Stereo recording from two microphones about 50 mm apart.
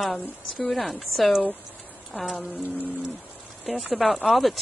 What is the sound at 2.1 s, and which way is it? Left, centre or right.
Speech, right.